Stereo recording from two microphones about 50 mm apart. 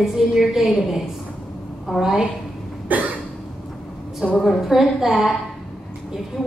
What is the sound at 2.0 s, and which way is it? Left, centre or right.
Speech, centre.